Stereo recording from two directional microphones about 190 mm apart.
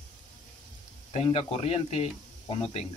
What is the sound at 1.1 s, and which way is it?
Speech, 30° left (ahead or behind).